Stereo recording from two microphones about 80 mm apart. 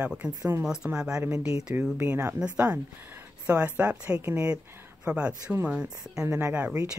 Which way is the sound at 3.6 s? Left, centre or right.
Centre.